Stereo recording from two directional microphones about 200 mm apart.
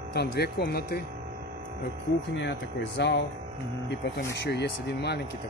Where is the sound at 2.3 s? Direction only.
60° left (ahead or behind).